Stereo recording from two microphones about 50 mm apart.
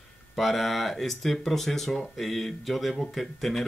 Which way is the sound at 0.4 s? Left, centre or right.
Centre.